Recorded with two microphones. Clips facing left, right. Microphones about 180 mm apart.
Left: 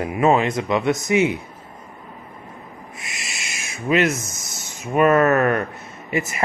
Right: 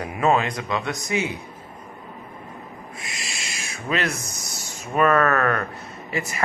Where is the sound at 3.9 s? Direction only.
10° left (ahead or behind).